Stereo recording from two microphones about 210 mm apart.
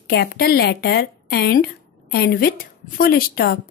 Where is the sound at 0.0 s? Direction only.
50° left (ahead or behind).